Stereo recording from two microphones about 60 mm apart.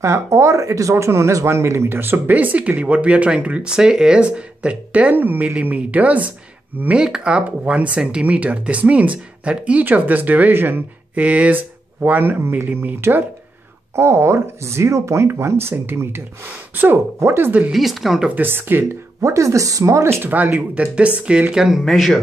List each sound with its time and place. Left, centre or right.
0.0 s speech: right
2.3 s speech: right
4.2 s speech: right
5.1 s speech: right
7.0 s speech: centre
9.8 s speech: right
11.1 s speech: right
12.0 s speech: right
17.6 s speech: centre
18.3 s speech: right
19.2 s speech: right
20.1 s speech: right
20.3 s speech: right
21.5 s speech: centre